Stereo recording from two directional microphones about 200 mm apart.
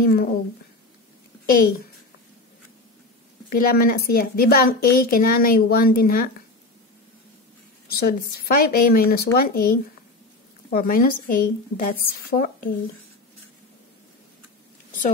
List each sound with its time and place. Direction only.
0.0 s a woman's voice: 50° left (ahead or behind)
1.4 s a child's voice: 45° left (ahead or behind)
3.4 s a woman's voice: 45° left (ahead or behind)
8.0 s a woman's voice: 45° left (ahead or behind)